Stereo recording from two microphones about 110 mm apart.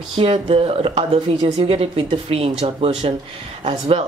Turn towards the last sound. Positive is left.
turn(degrees=-65)  # may be behind; listen again after turning